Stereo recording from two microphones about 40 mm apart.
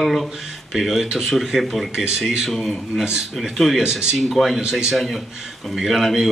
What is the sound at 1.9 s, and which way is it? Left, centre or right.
Speech, centre.